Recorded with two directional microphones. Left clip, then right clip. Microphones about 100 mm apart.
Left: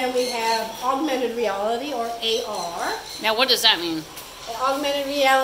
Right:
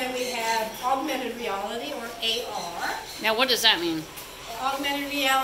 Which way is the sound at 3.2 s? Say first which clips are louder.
Left 3 dB; 5° left (ahead or behind).